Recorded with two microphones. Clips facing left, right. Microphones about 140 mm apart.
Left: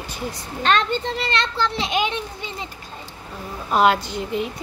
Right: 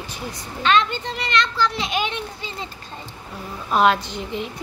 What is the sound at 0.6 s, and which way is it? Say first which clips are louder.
Speech: even; 45° left (ahead or behind).